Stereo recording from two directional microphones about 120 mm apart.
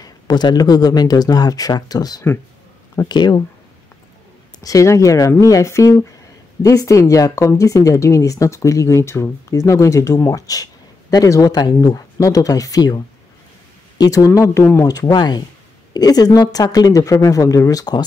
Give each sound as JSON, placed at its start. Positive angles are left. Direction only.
{"t": 0.0, "sound": "speech", "side_deg": 35}
{"t": 4.6, "sound": "speech", "side_deg": 25}